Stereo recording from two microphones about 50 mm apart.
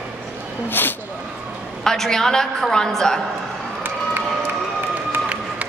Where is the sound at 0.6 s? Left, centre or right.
Left.